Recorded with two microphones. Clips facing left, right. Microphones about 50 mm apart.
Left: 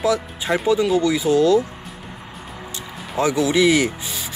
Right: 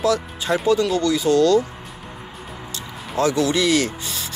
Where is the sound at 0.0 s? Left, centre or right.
Centre.